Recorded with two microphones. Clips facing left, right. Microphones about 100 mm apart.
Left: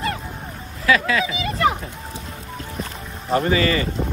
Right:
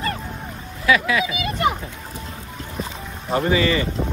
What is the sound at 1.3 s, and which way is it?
Speech, 30° left (ahead or behind).